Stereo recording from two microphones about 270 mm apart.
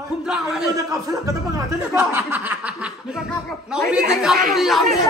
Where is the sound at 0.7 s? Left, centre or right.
Centre.